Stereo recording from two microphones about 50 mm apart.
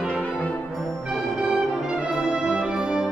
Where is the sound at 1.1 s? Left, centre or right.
Centre.